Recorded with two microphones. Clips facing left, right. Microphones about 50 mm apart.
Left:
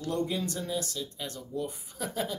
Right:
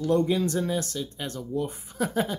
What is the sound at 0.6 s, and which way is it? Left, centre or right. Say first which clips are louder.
Speech: right 5 dB; right.